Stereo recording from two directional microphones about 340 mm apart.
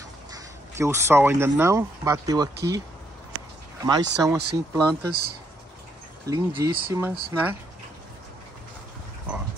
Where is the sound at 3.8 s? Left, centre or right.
Centre.